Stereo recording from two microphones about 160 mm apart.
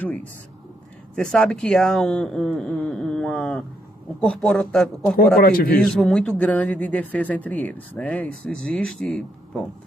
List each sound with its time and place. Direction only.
0.0 s speech: 10° left (ahead or behind)
5.4 s a man's voice: 70° left (ahead or behind)
5.9 s speech: centre (ahead or behind)